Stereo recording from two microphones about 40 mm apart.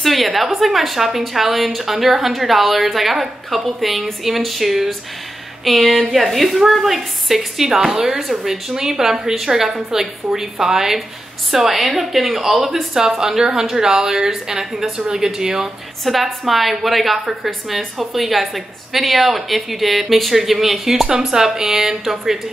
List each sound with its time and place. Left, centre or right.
0.0 s a woman's voice: centre
16.0 s a woman's voice: centre